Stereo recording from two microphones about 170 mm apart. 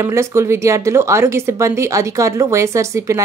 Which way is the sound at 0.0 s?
15° right (ahead or behind).